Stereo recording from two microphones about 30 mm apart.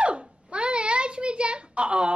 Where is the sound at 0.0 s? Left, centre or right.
Right.